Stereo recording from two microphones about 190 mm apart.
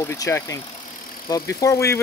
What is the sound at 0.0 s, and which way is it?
Speech, 15° left (ahead or behind).